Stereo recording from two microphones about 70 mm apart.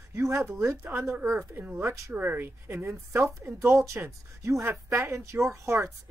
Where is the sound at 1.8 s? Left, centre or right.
Right.